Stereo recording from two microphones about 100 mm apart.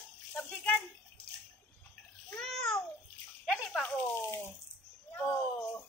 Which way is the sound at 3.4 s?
5° left (ahead or behind).